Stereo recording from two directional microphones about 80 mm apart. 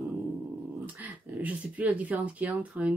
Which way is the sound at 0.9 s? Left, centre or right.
Centre.